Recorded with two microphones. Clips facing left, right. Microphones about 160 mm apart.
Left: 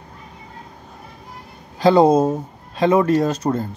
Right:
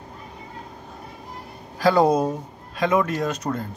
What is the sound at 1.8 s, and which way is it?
Speech, 20° left (ahead or behind).